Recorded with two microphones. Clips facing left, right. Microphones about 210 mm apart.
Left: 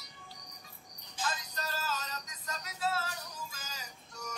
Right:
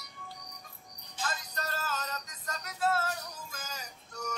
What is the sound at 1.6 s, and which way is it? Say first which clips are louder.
Music: right 2 dB; 55° right (ahead or behind).